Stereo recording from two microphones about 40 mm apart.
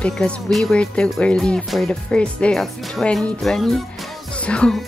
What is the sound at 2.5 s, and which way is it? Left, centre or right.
Speech, centre.